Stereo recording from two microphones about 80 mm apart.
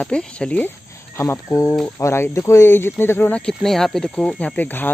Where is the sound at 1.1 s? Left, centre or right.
Left.